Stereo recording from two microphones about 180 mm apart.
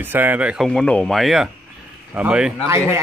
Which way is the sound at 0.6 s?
5° left (ahead or behind).